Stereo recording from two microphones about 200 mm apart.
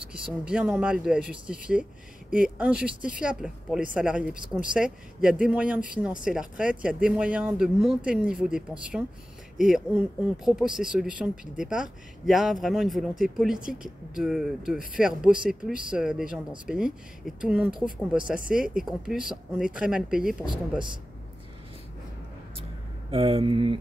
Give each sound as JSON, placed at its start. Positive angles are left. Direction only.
{"t": 0.5, "sound": "speech", "side_deg": -5}
{"t": 23.1, "sound": "speech", "side_deg": -25}